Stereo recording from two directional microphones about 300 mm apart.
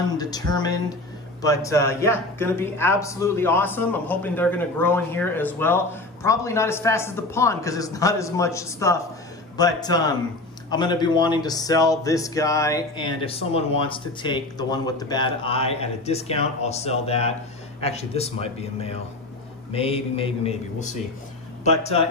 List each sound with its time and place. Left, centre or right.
0.2 s a man's voice: centre